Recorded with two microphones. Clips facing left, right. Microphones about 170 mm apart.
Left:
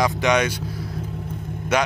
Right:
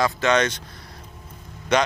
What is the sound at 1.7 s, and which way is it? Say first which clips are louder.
Speech: right 1 dB; 10° left (ahead or behind).